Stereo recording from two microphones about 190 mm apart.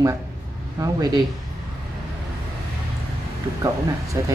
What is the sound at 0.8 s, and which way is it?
Speech, 20° right (ahead or behind).